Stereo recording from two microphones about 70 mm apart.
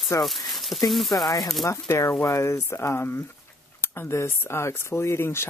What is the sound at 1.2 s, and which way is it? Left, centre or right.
Speech, left.